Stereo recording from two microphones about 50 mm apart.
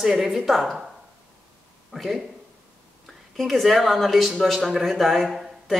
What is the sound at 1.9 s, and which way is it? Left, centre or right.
Speech, centre.